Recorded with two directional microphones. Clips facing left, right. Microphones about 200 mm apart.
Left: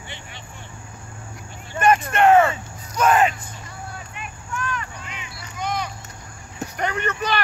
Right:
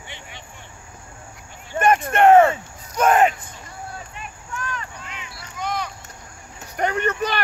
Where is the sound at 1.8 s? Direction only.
50° right (ahead or behind).